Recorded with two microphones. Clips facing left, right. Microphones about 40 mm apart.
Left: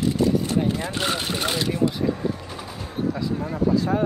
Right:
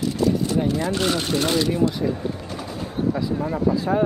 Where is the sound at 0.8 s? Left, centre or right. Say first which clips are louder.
Right 3 dB; centre.